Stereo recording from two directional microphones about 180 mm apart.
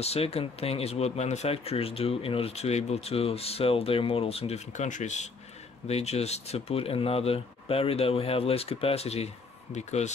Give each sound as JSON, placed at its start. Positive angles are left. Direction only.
{"t": 0.0, "sound": "speech", "side_deg": 35}